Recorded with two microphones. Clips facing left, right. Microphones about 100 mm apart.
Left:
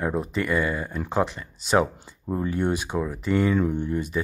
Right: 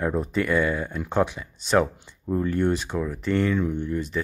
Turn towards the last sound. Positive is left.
turn(degrees=15)  # may be behind; listen again after turning